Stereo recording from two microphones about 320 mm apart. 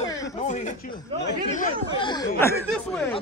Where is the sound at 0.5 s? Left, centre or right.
Left.